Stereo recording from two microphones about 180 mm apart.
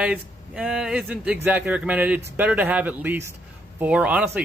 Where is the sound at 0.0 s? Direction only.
5° right (ahead or behind).